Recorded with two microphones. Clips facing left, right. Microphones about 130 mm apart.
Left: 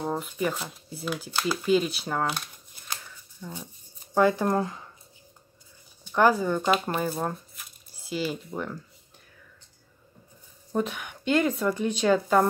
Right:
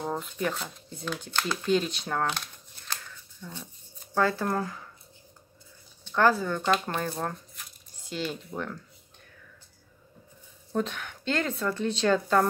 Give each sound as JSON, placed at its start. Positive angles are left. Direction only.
{"t": 0.0, "sound": "speech", "side_deg": 5}
{"t": 6.0, "sound": "speech", "side_deg": 15}
{"t": 10.7, "sound": "speech", "side_deg": 10}